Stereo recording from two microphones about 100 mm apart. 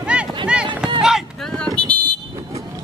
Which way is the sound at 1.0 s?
5° right (ahead or behind).